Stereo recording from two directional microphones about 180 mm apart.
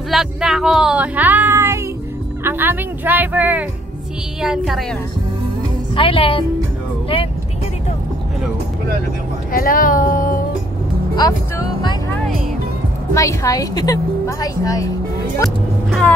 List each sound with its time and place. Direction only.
0.1 s a woman's voice: centre (ahead or behind)
5.9 s a woman's voice: 30° left (ahead or behind)
9.5 s music: 50° left (ahead or behind)
11.1 s music: 20° left (ahead or behind)
13.1 s a woman's voice: 15° left (ahead or behind)
15.4 s speech: centre (ahead or behind)